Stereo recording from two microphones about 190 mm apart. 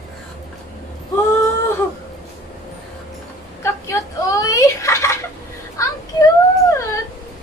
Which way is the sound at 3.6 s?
15° left (ahead or behind).